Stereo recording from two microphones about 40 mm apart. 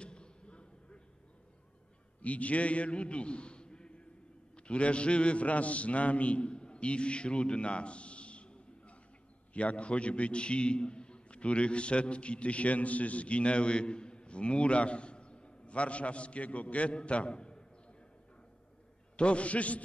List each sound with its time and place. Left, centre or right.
0.0 s arrow: left
2.2 s a man's voice: left
19.1 s a man's voice: left